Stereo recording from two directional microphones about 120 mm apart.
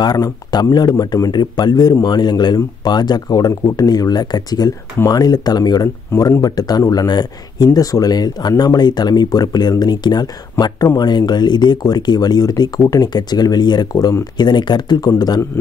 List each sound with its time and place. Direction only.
0.0 s speech: 35° left (ahead or behind)